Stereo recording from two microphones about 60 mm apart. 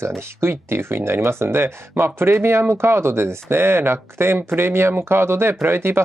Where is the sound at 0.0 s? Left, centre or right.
Right.